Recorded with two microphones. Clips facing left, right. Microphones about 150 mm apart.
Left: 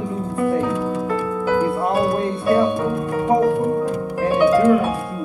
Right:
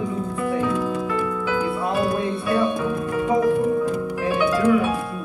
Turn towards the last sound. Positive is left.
turn(degrees=40)  # may be behind; listen again after turning